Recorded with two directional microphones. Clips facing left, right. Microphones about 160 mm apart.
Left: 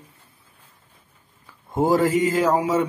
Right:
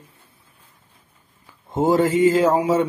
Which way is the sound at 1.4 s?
20° right (ahead or behind).